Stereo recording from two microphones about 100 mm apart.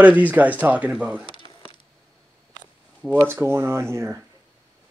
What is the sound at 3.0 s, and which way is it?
Speech, 20° right (ahead or behind).